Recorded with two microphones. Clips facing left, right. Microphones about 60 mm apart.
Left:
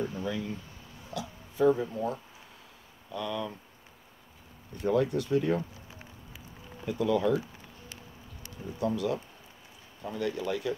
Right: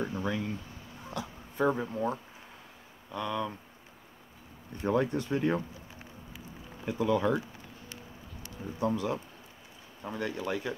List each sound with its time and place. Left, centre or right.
0.1 s a sound: right
1.1 s speech: right
1.7 s speech: right
4.8 s speech: right
6.9 s speech: right
8.7 s speech: right